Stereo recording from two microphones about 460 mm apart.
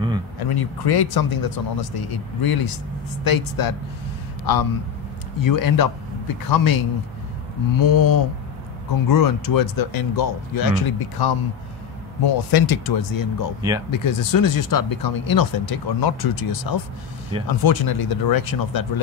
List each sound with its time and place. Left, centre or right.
0.5 s speech: left
13.6 s speech: centre
13.9 s speech: left